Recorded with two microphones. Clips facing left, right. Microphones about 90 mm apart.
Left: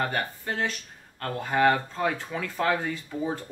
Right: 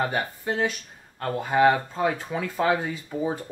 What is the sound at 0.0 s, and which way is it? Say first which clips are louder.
Speech: right 2 dB; 15° right (ahead or behind).